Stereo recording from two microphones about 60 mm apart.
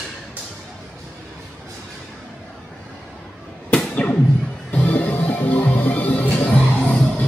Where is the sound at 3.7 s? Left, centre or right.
Left.